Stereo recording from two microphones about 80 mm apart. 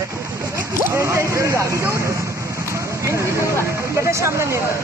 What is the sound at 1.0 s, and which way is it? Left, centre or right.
Speech, right.